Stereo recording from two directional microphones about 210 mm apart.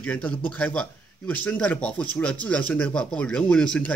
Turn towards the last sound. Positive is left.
turn(degrees=5)  # may be behind; listen again after turning